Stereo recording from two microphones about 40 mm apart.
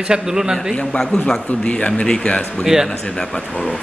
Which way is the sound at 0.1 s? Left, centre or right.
Centre.